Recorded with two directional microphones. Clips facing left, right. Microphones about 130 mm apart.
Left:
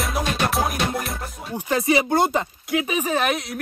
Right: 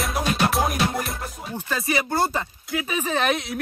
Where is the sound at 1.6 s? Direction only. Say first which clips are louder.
Left 6 dB; 20° left (ahead or behind).